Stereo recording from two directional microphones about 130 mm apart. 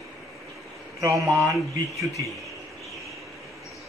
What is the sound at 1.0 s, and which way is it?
A man's voice, 25° right (ahead or behind).